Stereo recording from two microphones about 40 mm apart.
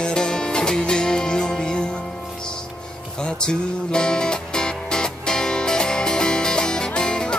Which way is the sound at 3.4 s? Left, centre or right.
Centre.